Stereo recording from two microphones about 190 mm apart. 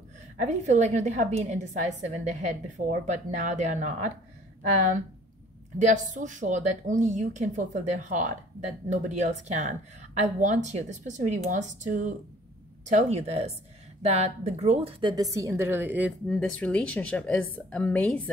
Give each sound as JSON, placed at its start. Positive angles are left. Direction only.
{"t": 0.4, "sound": "speech", "side_deg": -40}
{"t": 5.8, "sound": "a woman's voice", "side_deg": -40}
{"t": 16.3, "sound": "a woman's voice", "side_deg": 5}